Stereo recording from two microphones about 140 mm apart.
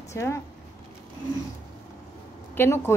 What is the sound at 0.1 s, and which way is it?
Speech, 20° left (ahead or behind).